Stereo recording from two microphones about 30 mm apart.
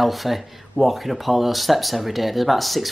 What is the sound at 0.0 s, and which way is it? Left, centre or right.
Speech, centre.